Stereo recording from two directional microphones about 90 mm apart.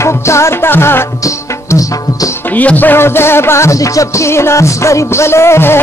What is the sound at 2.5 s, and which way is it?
Music, 20° left (ahead or behind).